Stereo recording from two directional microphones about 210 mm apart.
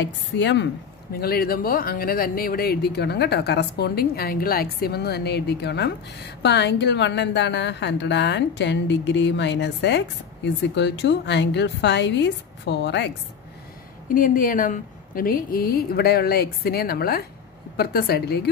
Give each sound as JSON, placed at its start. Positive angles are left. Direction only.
{"t": 0.0, "sound": "speech", "side_deg": 55}
{"t": 1.1, "sound": "speech", "side_deg": 45}
{"t": 14.0, "sound": "speech", "side_deg": 40}